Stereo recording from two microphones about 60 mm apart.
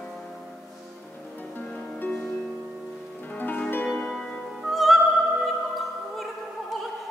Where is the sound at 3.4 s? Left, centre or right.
Left.